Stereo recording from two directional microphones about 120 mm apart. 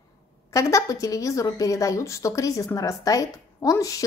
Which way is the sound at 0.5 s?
25° left (ahead or behind).